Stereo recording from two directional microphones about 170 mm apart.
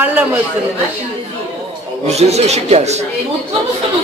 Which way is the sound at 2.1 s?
40° right (ahead or behind).